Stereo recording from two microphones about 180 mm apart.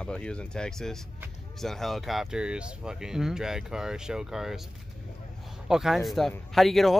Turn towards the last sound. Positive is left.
turn(degrees=0)  # may be behind; listen again after turning